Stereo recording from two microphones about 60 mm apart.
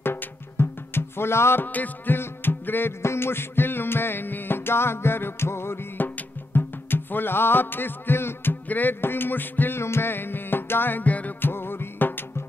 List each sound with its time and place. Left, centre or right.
0.0 s music: left
1.7 s music: left
11.5 s music: left